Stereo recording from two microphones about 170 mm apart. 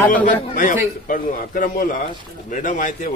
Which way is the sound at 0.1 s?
50° left (ahead or behind).